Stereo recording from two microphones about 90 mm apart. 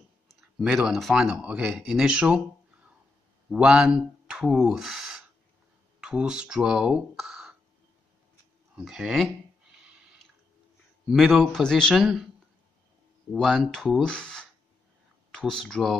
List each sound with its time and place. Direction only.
0.4 s speech: centre (ahead or behind)
8.7 s a man's voice: 5° right (ahead or behind)
11.1 s a man's voice: centre (ahead or behind)
13.3 s a man's voice: 5° left (ahead or behind)